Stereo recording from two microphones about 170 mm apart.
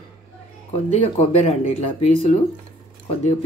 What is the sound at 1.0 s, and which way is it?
Speech, 40° left (ahead or behind).